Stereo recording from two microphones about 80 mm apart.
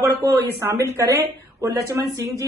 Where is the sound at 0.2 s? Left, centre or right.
Right.